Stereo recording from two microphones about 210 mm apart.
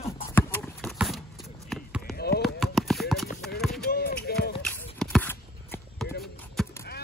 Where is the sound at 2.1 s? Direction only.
50° left (ahead or behind).